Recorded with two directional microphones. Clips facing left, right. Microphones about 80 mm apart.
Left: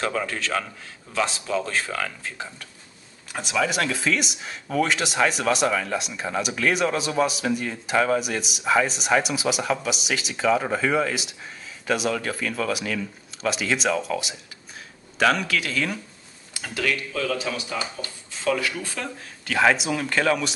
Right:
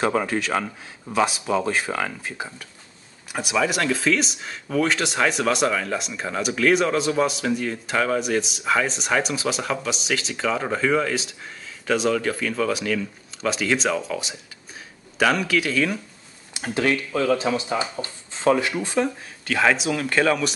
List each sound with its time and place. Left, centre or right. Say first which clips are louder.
0.0 s speech: right 4 dB; right; by 15.9 s centre
16.5 s speech: right 4 dB; right
19.4 s speech: even; centre